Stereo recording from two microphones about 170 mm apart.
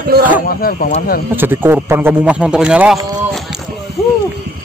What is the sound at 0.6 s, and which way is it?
Speech, 55° left (ahead or behind).